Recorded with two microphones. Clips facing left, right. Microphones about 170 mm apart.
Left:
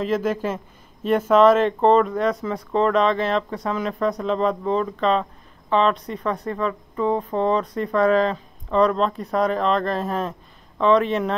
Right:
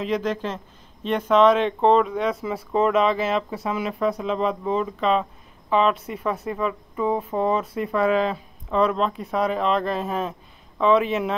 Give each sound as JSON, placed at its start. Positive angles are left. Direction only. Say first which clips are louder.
{"t": 0.0, "sound": "a woman's voice", "louder": "left 2 dB", "side_deg": 5}